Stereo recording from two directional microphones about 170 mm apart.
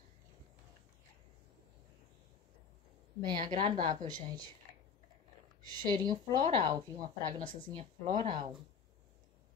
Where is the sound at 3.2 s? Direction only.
25° right (ahead or behind).